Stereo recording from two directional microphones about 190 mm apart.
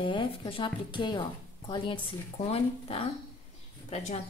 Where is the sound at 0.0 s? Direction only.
25° left (ahead or behind).